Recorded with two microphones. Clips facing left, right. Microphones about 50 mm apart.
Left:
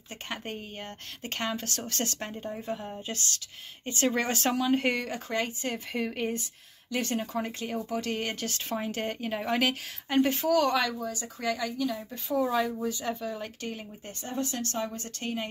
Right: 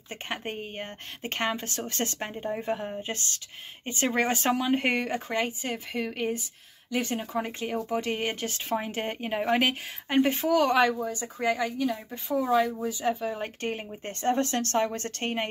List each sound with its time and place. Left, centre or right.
0.3 s speech: right
5.6 s speech: centre; by 12.0 s right
12.1 s speech: centre; by 14.1 s right
14.2 s a woman's voice: right